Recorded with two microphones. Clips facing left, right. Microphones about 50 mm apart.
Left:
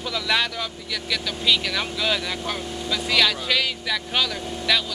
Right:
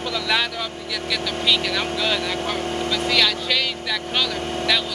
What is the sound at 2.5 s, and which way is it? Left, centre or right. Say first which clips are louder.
Speech: right 6 dB; right.